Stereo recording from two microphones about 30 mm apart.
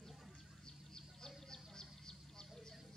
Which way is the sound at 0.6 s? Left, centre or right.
Left.